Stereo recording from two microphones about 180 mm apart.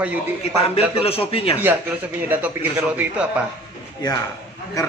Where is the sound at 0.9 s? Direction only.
30° left (ahead or behind).